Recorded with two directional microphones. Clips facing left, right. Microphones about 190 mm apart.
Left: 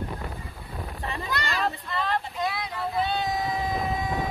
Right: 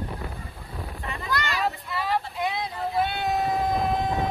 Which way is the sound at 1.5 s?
5° right (ahead or behind).